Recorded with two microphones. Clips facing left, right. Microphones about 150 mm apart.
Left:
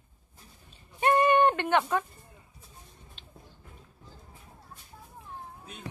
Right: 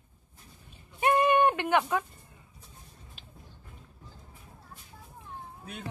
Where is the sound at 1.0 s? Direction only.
5° right (ahead or behind).